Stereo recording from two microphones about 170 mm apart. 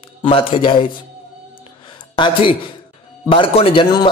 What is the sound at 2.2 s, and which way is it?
Speech, 30° left (ahead or behind).